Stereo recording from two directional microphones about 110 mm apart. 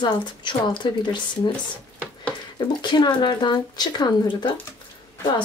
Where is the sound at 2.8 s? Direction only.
40° left (ahead or behind).